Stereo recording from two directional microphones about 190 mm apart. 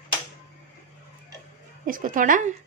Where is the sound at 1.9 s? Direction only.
45° right (ahead or behind).